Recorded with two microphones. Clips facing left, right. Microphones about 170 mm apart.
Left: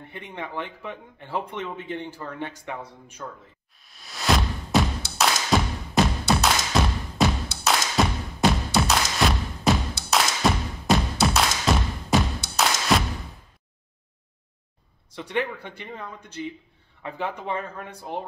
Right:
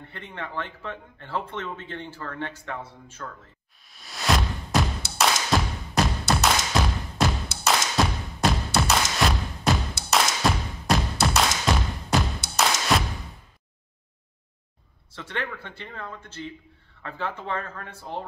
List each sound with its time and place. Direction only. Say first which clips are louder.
0.1 s speech: left 1 dB; 15° left (ahead or behind)
3.8 s music: left 1 dB; centre (ahead or behind)
15.1 s speech: left 5 dB; 15° left (ahead or behind)